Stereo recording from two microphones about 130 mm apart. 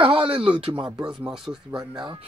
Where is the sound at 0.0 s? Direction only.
45° right (ahead or behind).